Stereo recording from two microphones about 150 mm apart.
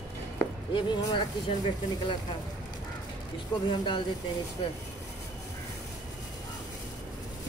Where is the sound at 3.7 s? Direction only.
30° left (ahead or behind).